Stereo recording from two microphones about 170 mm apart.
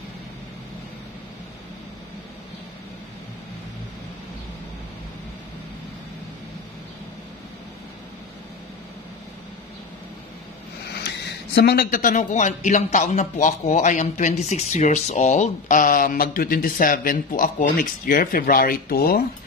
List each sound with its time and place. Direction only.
10.9 s speech: 80° left; by 19.2 s 60° left (ahead or behind)